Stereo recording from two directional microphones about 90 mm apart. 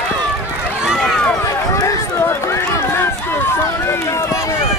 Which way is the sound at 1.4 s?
40° left (ahead or behind).